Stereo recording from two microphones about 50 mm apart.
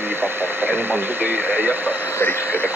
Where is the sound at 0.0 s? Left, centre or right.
Right.